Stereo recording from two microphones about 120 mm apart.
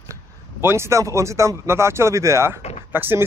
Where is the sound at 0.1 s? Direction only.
20° right (ahead or behind).